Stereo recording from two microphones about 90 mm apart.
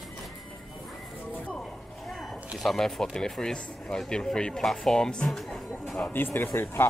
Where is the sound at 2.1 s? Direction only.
Centre (ahead or behind).